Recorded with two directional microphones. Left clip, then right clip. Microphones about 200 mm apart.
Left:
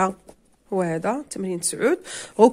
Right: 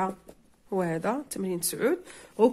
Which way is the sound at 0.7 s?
20° left (ahead or behind).